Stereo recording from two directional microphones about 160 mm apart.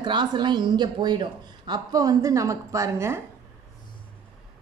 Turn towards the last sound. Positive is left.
turn(degrees=-15)  # may be behind; listen again after turning